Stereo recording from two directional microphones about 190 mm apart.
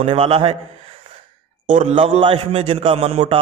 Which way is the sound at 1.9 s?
30° right (ahead or behind).